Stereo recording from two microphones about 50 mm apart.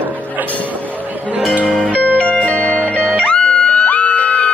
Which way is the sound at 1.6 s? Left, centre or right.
Right.